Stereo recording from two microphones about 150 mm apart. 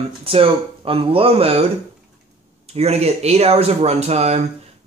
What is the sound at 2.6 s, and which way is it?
Speech, 45° right (ahead or behind).